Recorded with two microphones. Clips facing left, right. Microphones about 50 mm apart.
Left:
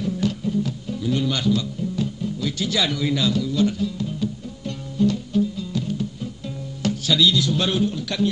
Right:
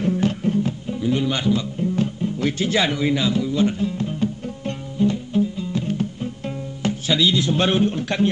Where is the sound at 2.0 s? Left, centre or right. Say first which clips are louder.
Right 2 dB; right.